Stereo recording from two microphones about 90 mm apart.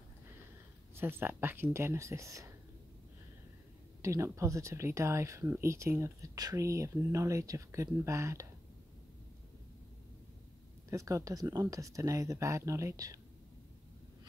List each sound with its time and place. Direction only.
0.9 s speech: 25° right (ahead or behind)
4.0 s speech: 35° right (ahead or behind)
10.9 s speech: 35° right (ahead or behind)